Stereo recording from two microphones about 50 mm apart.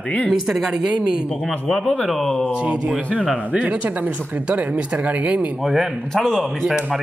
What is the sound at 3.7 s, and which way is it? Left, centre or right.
Speech, right.